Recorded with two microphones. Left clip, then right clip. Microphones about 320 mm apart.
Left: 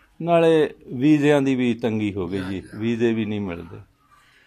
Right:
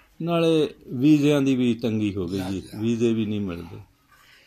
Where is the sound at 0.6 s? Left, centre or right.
Left.